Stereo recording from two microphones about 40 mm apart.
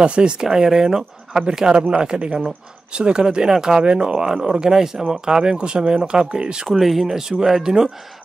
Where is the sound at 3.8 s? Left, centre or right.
Right.